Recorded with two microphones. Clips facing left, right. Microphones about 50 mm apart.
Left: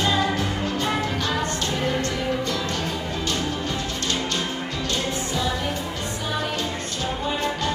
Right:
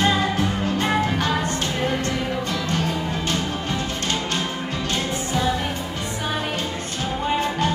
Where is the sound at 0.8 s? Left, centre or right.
Right.